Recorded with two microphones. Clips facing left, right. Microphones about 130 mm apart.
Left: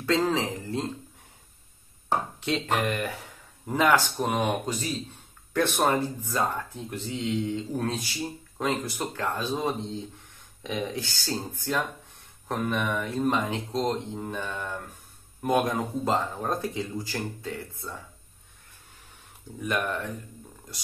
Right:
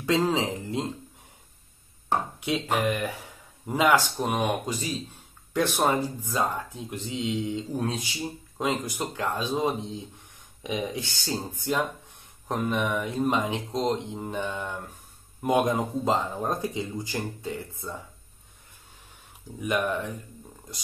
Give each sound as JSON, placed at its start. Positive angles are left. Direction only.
{"t": 0.0, "sound": "speech", "side_deg": -15}
{"t": 2.4, "sound": "speech", "side_deg": -10}
{"t": 5.8, "sound": "speech", "side_deg": -10}
{"t": 19.6, "sound": "speech", "side_deg": -15}